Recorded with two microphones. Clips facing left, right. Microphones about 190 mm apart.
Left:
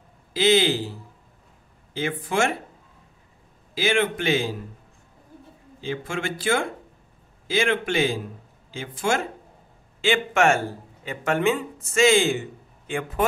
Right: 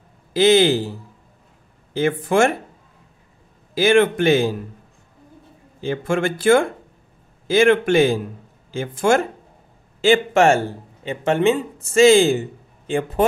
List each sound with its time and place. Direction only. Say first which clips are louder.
0.3 s speech: right 6 dB; 50° right (ahead or behind)
2.0 s speech: right 7 dB; 50° right (ahead or behind)
3.7 s speech: right 8 dB; 50° right (ahead or behind)
5.8 s speech: right 8 dB; 50° right (ahead or behind)
10.0 s speech: right 6 dB; 35° right (ahead or behind)